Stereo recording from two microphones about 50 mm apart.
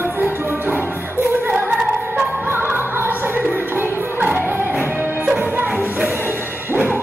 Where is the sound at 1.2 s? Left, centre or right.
Right.